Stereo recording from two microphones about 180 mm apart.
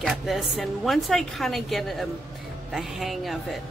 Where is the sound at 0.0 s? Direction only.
Centre (ahead or behind).